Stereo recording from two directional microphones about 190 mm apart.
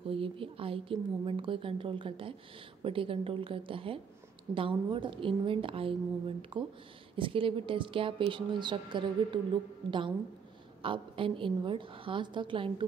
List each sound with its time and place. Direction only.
0.0 s a woman's voice: 30° right (ahead or behind)